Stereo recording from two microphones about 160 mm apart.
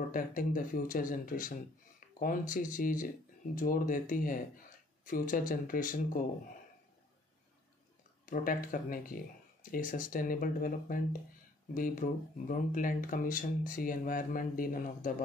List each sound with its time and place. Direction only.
0.1 s speech: 60° left (ahead or behind)
8.3 s speech: 60° left (ahead or behind)